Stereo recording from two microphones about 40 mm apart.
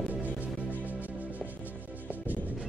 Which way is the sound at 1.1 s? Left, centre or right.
Right.